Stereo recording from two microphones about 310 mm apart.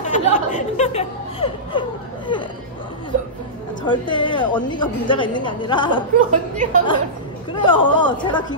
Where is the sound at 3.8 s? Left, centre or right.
Centre.